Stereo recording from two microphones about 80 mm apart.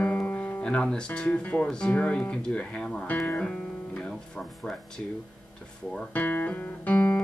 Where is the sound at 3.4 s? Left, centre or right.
Centre.